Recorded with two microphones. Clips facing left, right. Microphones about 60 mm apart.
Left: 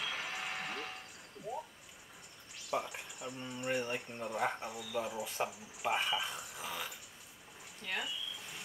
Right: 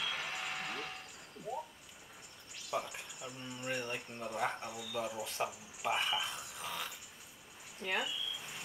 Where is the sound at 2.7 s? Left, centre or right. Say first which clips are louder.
Left 1 dB; centre.